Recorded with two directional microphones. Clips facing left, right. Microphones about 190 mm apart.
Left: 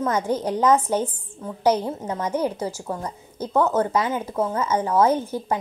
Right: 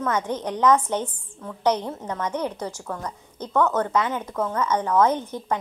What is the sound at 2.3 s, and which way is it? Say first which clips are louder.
Speech: left 4 dB; 5° left (ahead or behind).